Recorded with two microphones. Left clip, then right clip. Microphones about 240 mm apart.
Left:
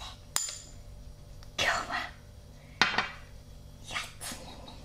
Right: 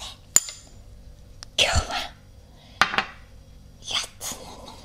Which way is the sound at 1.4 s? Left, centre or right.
Right.